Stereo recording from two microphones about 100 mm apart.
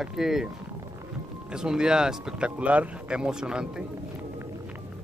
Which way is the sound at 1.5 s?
5° right (ahead or behind).